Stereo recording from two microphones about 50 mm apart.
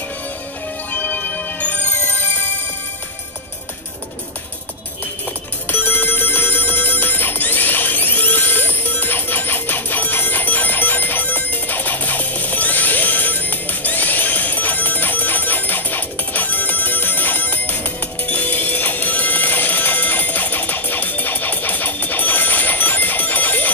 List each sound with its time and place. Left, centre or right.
0.9 s music: left
5.7 s music: left